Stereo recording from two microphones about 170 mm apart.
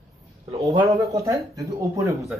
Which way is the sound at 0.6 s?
25° right (ahead or behind).